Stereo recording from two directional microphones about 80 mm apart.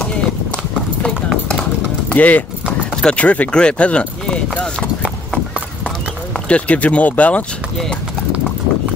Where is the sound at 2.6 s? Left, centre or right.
Centre.